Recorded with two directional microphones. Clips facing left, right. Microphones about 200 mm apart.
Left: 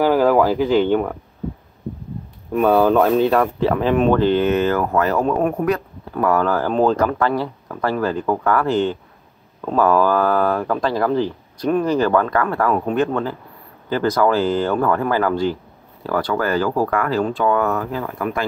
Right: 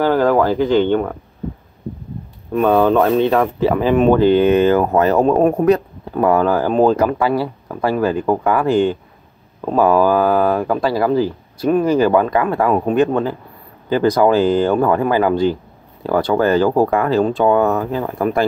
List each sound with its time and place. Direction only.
0.0 s speech: 10° left (ahead or behind)
2.5 s speech: 5° left (ahead or behind); by 18.4 s 35° right (ahead or behind)